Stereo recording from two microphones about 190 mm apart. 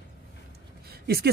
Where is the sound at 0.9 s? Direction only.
55° right (ahead or behind).